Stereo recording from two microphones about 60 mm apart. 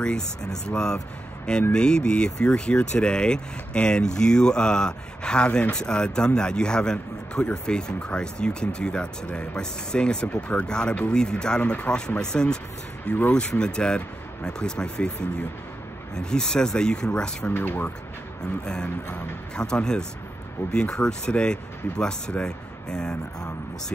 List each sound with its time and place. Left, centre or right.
0.0 s speech: centre
17.5 s speech: left
18.7 s speech: centre